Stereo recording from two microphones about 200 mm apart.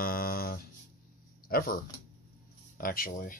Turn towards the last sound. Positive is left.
turn(degrees=45)  # may be behind; listen again after turning